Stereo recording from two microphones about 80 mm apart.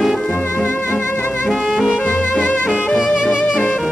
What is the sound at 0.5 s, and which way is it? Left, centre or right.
Music, left.